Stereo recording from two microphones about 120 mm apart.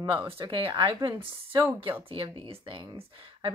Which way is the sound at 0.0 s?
40° right (ahead or behind).